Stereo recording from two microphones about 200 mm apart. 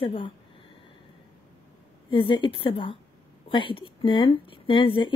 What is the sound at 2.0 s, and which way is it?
Speech, 25° left (ahead or behind).